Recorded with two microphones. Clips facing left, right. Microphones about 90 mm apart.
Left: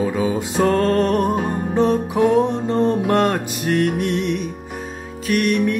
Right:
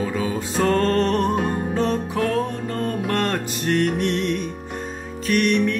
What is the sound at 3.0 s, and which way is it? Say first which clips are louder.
Music: left 5 dB; 15° left (ahead or behind).